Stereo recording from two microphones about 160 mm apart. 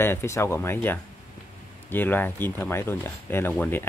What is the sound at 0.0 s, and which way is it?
Speech, 15° left (ahead or behind).